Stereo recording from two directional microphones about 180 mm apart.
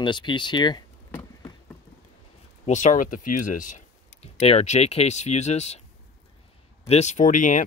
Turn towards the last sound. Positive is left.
turn(degrees=45)  # may be behind; listen again after turning